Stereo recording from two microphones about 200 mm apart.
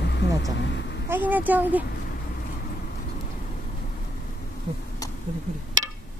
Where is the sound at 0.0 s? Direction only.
60° left (ahead or behind).